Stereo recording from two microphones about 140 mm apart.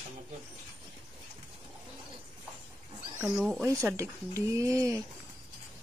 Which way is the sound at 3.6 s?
20° right (ahead or behind).